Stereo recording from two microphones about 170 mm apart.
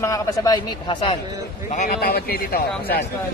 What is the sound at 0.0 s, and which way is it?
Speech, 20° left (ahead or behind).